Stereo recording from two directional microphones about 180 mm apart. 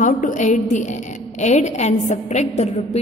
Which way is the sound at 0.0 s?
45° left (ahead or behind).